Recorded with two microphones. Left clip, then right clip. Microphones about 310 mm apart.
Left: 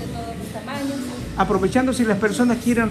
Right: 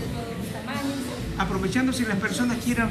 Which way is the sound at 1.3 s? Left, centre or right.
Centre.